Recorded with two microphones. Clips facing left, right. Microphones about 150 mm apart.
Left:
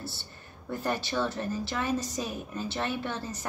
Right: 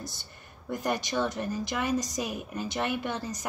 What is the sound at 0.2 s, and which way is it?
A woman's voice, 15° right (ahead or behind).